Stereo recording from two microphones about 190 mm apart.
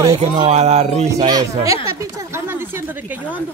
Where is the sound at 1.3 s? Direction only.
20° right (ahead or behind).